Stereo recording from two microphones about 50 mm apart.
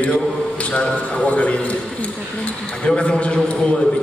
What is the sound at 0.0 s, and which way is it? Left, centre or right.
A man's voice, left.